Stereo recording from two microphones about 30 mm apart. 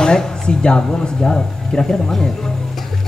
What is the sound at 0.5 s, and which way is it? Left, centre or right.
Speech, left.